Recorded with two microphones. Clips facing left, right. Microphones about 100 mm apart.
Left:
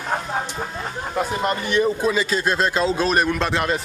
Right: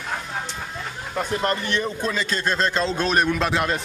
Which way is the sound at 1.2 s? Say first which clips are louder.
Left 1 dB; 5° left (ahead or behind).